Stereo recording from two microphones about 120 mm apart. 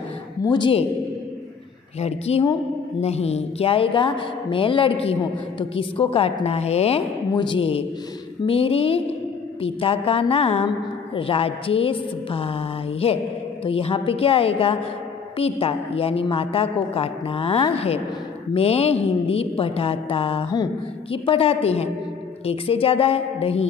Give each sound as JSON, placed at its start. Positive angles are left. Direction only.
{"t": 0.4, "sound": "a woman's voice", "side_deg": 40}
{"t": 2.0, "sound": "a woman's voice", "side_deg": 60}
{"t": 7.3, "sound": "a woman's voice", "side_deg": 45}